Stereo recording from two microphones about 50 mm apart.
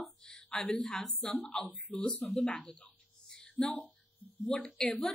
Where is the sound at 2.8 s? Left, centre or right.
Centre.